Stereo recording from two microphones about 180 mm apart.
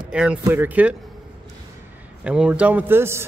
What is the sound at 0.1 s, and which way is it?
Speech, 5° right (ahead or behind).